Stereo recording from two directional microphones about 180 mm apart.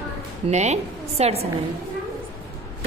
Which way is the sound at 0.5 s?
40° right (ahead or behind).